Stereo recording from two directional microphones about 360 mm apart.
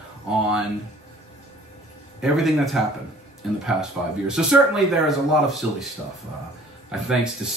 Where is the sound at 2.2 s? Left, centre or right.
Centre.